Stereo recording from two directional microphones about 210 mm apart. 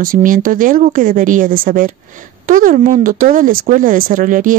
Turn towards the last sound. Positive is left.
turn(degrees=-40)  # may be behind; listen again after turning